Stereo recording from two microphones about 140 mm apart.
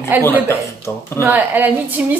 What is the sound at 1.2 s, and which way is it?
Speech, 10° right (ahead or behind).